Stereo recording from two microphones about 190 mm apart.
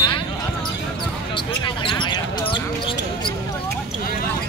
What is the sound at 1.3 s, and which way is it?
Basketball bounce, 25° left (ahead or behind).